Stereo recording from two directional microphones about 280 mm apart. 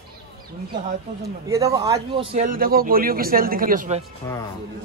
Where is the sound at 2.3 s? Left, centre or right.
Right.